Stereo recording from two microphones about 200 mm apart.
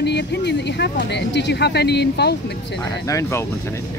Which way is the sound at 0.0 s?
55° left (ahead or behind).